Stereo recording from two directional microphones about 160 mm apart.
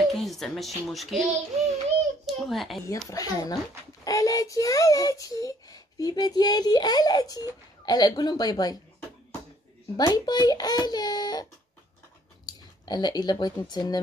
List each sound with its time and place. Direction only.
0.1 s a child's voice: centre (ahead or behind)
3.1 s a child's voice: 20° left (ahead or behind)
9.9 s a child's voice: 25° left (ahead or behind)
12.4 s speech: 25° left (ahead or behind)